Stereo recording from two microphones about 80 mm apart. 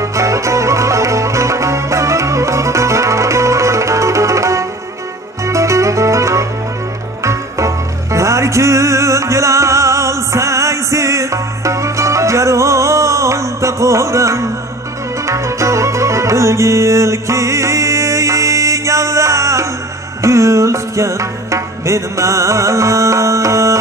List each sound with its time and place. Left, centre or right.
0.0 s music: right